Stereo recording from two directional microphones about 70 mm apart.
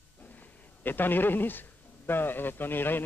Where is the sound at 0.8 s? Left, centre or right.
Left.